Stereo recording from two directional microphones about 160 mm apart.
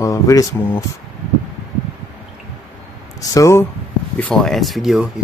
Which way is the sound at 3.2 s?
20° left (ahead or behind).